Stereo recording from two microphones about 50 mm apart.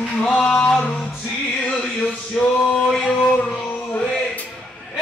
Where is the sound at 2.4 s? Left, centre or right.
Centre.